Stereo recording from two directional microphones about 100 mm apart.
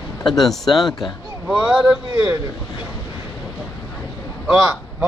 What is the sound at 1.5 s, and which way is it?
Speech, 5° right (ahead or behind).